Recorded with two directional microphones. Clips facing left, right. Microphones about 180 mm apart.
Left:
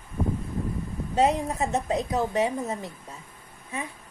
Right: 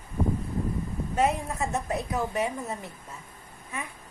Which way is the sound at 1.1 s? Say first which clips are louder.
Left 3 dB; 20° left (ahead or behind).